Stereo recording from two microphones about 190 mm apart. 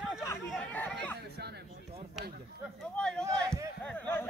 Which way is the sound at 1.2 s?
55° right (ahead or behind).